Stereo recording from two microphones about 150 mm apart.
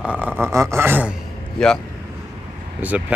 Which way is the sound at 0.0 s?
10° right (ahead or behind).